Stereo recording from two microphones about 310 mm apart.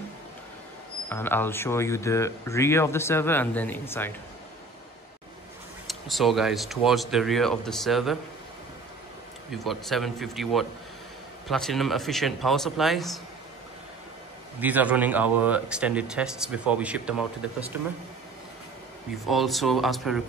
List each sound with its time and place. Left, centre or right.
1.0 s speech: centre
5.9 s speech: centre
9.5 s speech: centre
14.6 s speech: centre
19.2 s speech: centre